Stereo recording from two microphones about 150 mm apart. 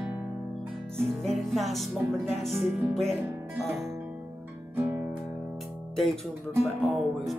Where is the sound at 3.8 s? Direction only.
20° right (ahead or behind).